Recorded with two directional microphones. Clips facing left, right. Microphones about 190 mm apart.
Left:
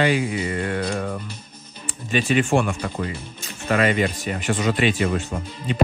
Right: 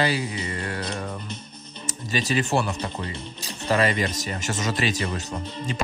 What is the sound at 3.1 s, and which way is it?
Speech, 35° right (ahead or behind).